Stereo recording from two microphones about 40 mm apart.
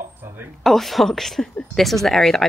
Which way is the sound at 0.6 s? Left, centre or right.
Centre.